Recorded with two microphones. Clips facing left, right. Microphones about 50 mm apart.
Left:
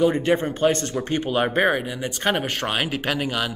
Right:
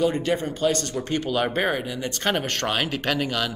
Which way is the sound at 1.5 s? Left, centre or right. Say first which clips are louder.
Left 4 dB; centre.